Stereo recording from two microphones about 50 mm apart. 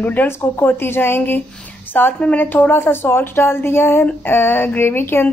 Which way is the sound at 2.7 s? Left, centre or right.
Left.